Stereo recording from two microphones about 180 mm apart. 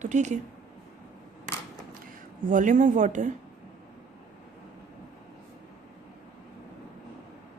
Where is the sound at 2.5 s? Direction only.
45° right (ahead or behind).